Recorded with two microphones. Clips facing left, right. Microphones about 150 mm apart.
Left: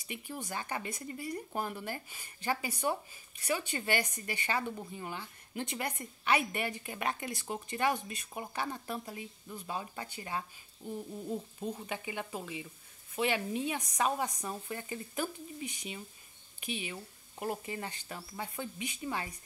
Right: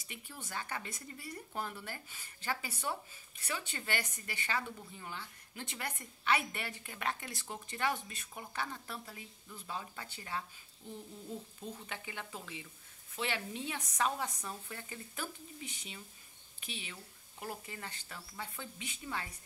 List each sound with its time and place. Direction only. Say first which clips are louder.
0.1 s a woman's voice: left 6 dB; 15° left (ahead or behind)
11.8 s a woman's voice: left 6 dB; 15° left (ahead or behind)